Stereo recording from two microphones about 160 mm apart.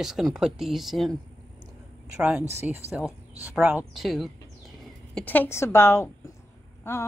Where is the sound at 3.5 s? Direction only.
10° right (ahead or behind).